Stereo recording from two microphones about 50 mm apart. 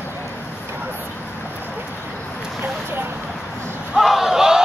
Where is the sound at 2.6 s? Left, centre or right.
Right.